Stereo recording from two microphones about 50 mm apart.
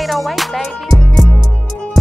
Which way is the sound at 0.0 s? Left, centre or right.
Centre.